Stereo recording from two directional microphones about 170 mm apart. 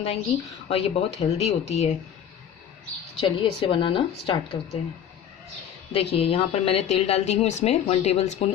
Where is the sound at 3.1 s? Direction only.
30° left (ahead or behind).